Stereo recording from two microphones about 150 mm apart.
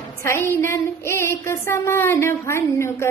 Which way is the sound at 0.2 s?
20° left (ahead or behind).